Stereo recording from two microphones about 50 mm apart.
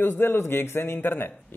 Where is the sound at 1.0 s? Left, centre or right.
Left.